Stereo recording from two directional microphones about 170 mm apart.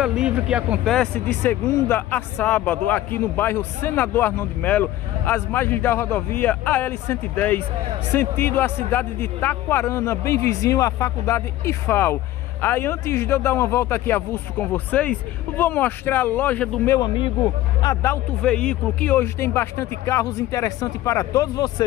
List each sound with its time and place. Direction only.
0.0 s speech: 5° right (ahead or behind)
0.9 s speech: 10° left (ahead or behind)
17.0 s speech: 30° left (ahead or behind)
18.4 s speech: 5° left (ahead or behind); by 21.8 s 20° left (ahead or behind)